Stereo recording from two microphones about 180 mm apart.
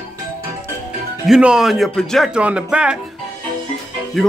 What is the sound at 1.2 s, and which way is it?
Speech, 5° right (ahead or behind).